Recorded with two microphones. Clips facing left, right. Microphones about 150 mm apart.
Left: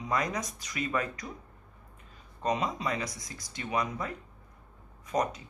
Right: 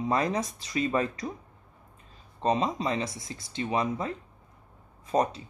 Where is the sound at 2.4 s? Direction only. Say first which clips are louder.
Right 4 dB; 30° right (ahead or behind).